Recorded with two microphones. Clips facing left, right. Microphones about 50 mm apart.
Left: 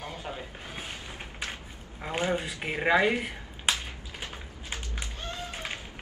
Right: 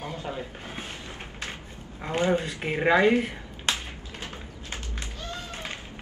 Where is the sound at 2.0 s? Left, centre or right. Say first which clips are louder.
Right 4 dB; centre.